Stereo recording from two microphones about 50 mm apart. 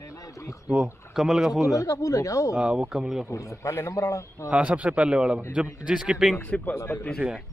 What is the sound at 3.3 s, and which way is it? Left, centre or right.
Speech, left.